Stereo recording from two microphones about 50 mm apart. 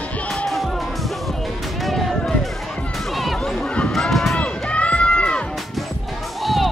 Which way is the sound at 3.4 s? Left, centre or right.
Centre.